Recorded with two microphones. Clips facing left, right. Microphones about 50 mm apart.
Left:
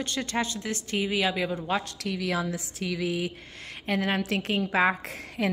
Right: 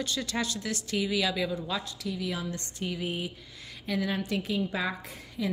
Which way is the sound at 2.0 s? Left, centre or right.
Left.